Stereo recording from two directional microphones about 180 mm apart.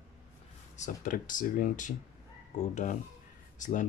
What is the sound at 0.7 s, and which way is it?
Speech, 45° left (ahead or behind).